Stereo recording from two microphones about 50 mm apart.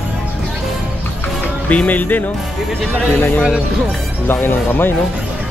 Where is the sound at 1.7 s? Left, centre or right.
Left.